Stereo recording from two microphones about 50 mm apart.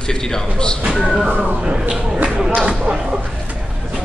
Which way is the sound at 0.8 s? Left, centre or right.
Centre.